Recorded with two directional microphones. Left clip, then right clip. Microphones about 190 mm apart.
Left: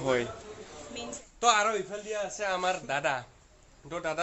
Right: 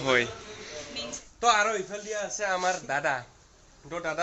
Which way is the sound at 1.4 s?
10° left (ahead or behind).